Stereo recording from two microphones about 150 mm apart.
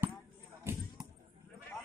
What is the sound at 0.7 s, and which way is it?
Basketball bounce, 15° right (ahead or behind).